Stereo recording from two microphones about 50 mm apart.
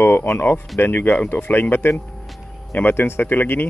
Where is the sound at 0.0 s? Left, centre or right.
Left.